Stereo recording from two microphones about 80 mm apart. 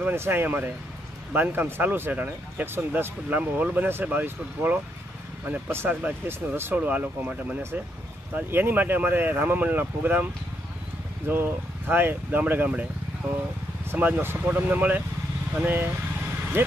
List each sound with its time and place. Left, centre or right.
0.0 s speech: right
11.9 s speech: right
13.8 s speech: right